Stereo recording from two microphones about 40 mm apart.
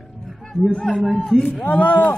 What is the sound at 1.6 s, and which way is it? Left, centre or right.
Speech, left.